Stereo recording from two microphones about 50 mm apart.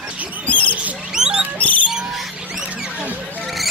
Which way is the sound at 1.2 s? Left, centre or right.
Centre.